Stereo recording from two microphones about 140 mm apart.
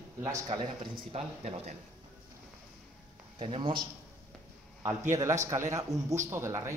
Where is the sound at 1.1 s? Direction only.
50° right (ahead or behind).